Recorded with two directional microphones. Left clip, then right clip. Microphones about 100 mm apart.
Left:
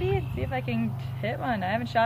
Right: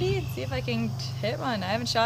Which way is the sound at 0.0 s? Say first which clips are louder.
Even; 45° right (ahead or behind).